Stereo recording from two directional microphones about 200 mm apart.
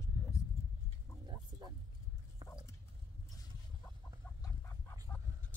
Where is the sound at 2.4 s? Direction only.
15° left (ahead or behind).